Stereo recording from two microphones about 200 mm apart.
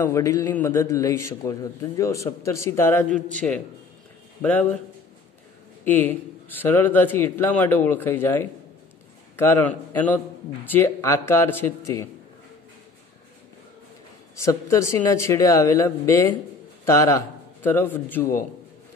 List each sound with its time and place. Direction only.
0.0 s a man's voice: 15° left (ahead or behind)
3.1 s a man's voice: 40° right (ahead or behind)
4.4 s a man's voice: 10° left (ahead or behind)
5.9 s a man's voice: 10° left (ahead or behind)
14.3 s a man's voice: 15° left (ahead or behind)